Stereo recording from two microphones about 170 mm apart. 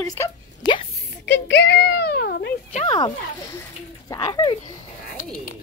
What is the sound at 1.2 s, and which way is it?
A child's voice, 85° left.